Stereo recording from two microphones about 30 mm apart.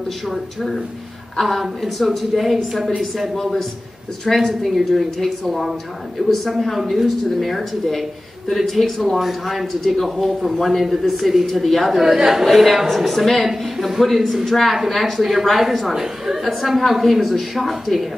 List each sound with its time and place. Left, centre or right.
0.3 s a man's voice: centre
3.0 s a man's voice: centre
6.2 s a woman's voice: centre
6.5 s a woman's voice: centre
10.0 s a woman's voice: centre
10.6 s a man's voice: centre
12.4 s a man's voice: centre
15.9 s a woman's voice: centre
16.4 s a man's voice: centre